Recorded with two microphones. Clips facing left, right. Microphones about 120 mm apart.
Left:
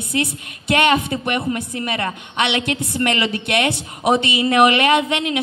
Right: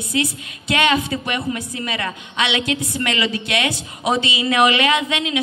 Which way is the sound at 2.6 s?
55° left (ahead or behind).